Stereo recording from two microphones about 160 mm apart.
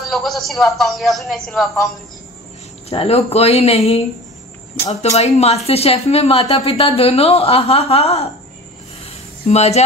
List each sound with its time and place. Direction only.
0.1 s a man's voice: centre (ahead or behind)
2.9 s a woman's voice: 40° left (ahead or behind)
5.1 s a woman's voice: 40° left (ahead or behind)
9.5 s speech: 40° left (ahead or behind)